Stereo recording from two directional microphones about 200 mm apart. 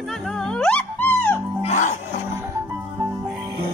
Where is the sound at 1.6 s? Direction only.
35° left (ahead or behind).